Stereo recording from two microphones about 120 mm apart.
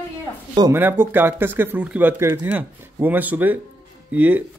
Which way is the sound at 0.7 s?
15° right (ahead or behind).